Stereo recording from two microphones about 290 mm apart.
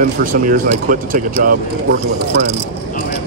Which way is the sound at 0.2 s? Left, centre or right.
Right.